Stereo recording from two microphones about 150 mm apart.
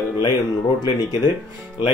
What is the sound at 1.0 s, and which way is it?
Speech, 30° left (ahead or behind).